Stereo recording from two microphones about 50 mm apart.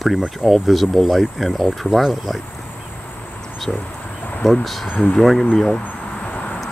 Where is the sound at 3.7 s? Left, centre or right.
Centre.